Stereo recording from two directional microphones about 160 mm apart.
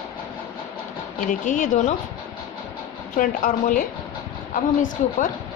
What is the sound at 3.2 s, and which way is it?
Speech, 55° left (ahead or behind).